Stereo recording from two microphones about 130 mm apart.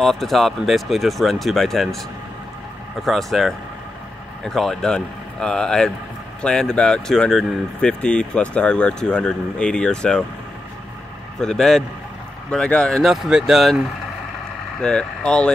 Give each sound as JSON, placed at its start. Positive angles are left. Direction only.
{"t": 0.0, "sound": "speech", "side_deg": 0}
{"t": 3.0, "sound": "speech", "side_deg": 0}
{"t": 11.3, "sound": "speech", "side_deg": 5}